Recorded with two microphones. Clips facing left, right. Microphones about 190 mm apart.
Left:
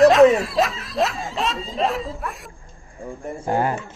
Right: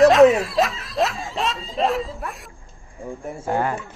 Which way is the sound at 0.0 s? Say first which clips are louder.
Even; centre (ahead or behind).